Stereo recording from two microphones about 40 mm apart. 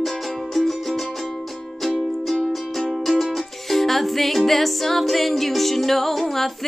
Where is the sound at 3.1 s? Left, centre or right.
Centre.